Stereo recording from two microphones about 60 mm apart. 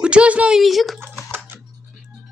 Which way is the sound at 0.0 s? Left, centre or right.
Centre.